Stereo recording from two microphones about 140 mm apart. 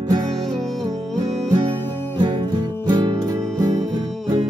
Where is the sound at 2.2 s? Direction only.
35° right (ahead or behind).